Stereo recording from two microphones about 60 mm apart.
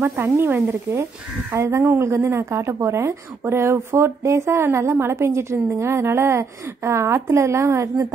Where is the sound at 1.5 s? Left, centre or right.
Right.